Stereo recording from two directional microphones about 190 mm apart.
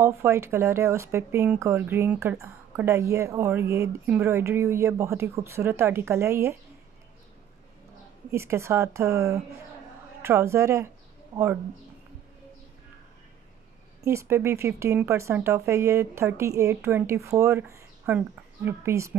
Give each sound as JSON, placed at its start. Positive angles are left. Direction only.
{"t": 0.0, "sound": "speech", "side_deg": -15}
{"t": 8.3, "sound": "speech", "side_deg": -15}
{"t": 11.3, "sound": "speech", "side_deg": -30}
{"t": 14.0, "sound": "speech", "side_deg": -15}